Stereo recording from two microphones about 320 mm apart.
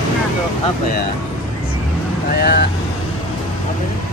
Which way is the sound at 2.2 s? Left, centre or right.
Left.